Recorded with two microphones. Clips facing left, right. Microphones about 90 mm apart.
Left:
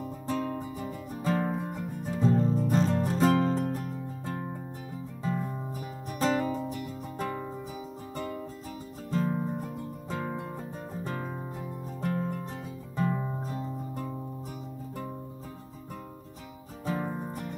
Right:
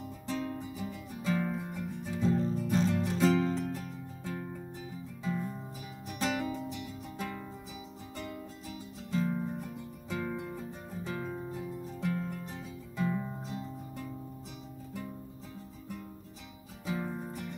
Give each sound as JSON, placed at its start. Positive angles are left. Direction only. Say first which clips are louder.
{"t": 0.0, "sound": "music", "louder": "left 5 dB", "side_deg": 50}
{"t": 9.1, "sound": "music", "louder": "left 3 dB", "side_deg": 45}
{"t": 16.8, "sound": "music", "louder": "left 4 dB", "side_deg": 50}